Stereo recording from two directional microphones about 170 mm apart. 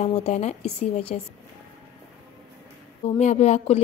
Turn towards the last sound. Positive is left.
turn(degrees=40)  # may be behind; listen again after turning